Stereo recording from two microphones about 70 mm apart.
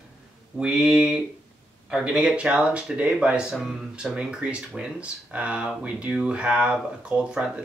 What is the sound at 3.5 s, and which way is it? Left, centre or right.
Speech, centre.